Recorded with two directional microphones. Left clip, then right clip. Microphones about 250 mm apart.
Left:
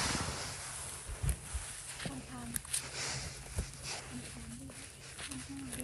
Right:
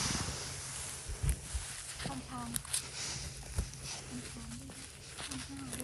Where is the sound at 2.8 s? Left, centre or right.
Left.